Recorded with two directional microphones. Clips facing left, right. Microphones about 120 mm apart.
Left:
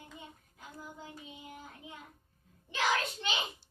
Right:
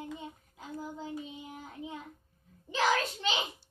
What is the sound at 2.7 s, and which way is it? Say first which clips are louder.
Child singing: right 3 dB; 40° right (ahead or behind).